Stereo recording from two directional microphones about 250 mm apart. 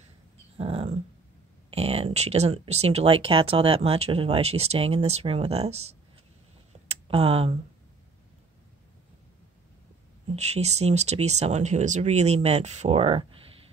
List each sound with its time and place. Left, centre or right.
0.6 s dog: right
1.7 s speech: right
10.2 s speech: right